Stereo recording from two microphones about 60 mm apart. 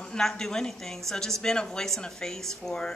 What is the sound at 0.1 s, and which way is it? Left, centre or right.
A woman's voice, centre.